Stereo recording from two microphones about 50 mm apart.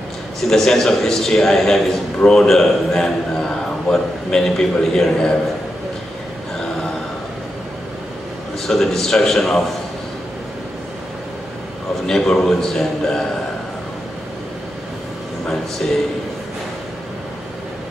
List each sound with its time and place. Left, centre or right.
0.5 s a man's voice: centre
8.6 s a man's voice: centre
12.1 s a man's voice: centre
15.4 s a man's voice: centre